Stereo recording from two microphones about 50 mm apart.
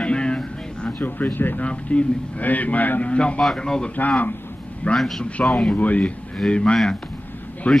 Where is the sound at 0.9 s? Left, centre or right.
Left.